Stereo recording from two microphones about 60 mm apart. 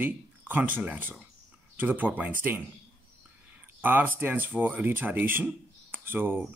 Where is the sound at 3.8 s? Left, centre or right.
Right.